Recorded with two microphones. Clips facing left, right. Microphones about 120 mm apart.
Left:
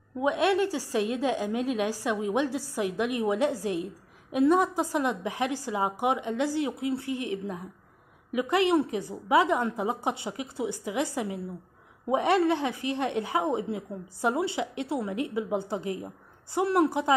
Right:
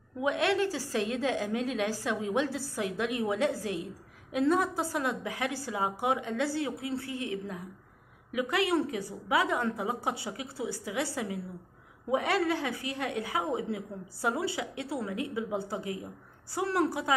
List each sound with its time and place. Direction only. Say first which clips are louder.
0.2 s a woman's voice: left 3 dB; 20° left (ahead or behind)